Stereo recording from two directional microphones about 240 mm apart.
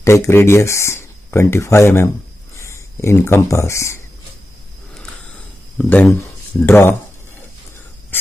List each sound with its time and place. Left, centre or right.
0.0 s speech: centre
5.8 s speech: centre